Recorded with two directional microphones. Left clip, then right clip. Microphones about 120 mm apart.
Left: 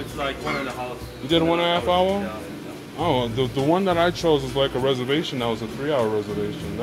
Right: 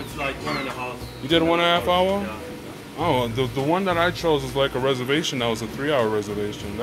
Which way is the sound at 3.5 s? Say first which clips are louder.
Left 2 dB; 30° left (ahead or behind).